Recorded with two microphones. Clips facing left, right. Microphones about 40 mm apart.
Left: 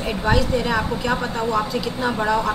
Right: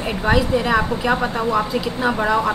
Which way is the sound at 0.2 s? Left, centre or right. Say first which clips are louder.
Right 3 dB; centre.